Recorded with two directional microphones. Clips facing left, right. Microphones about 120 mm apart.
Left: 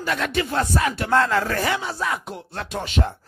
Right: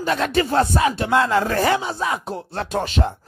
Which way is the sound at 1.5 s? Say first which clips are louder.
Right 5 dB; 35° right (ahead or behind).